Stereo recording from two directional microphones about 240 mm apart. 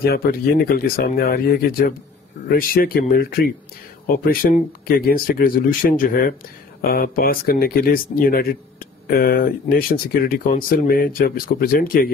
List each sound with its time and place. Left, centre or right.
0.0 s speech: left